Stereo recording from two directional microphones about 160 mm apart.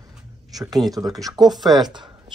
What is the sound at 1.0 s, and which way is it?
Speech, 20° right (ahead or behind).